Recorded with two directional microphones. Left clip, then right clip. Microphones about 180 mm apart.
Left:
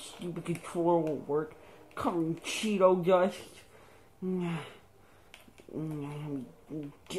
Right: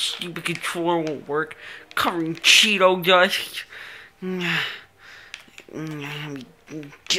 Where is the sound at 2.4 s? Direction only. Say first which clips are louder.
Right 13 dB; 5° right (ahead or behind).